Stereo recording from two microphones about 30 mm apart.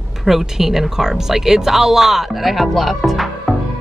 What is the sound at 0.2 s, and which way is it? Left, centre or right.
A woman's voice, centre.